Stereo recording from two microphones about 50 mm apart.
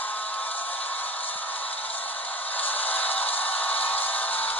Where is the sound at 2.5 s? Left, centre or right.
Left.